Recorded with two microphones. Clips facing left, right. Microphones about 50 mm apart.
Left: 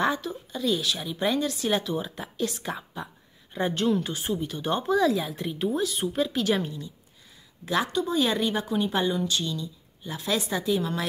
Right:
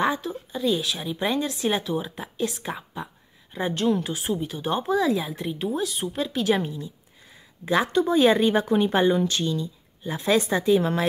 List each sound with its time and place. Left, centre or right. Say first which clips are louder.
0.0 s a woman's voice: right 2 dB; centre
7.9 s a woman's voice: right 6 dB; right